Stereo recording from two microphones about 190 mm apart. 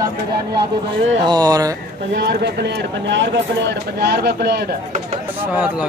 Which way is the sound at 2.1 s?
60° right (ahead or behind).